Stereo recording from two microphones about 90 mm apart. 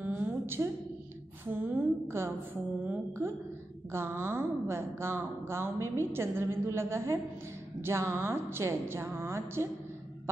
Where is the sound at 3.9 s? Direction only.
30° right (ahead or behind).